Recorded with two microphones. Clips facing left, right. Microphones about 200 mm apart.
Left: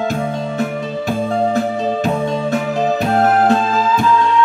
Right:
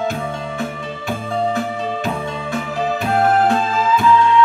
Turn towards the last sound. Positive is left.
turn(degrees=40)  # may be behind; listen again after turning